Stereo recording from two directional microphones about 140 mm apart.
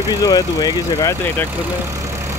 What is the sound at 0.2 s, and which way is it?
Speech, 30° left (ahead or behind).